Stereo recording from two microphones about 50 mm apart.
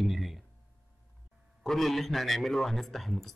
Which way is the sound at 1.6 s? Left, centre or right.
Centre.